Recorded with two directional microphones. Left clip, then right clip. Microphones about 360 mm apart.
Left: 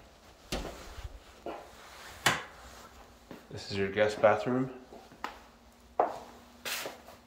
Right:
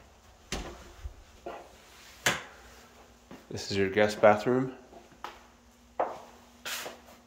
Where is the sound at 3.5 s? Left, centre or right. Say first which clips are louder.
Right 4 dB; centre.